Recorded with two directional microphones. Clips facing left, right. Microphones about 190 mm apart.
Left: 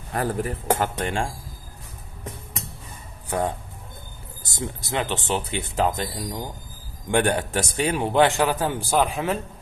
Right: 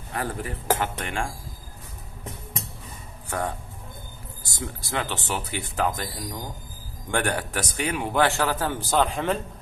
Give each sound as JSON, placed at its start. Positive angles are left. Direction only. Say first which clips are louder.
{"t": 0.1, "sound": "speech", "louder": "left 5 dB", "side_deg": 40}
{"t": 3.3, "sound": "a man's voice", "louder": "left 4 dB", "side_deg": 20}